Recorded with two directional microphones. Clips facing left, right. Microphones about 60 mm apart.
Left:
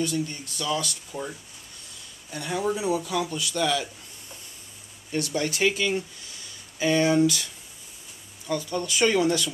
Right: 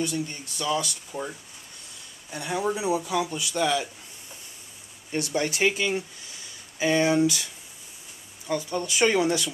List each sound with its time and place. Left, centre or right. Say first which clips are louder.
0.0 s speech: left 1 dB; right
2.3 s speech: even; centre
5.1 s speech: even; right
8.5 s speech: even; right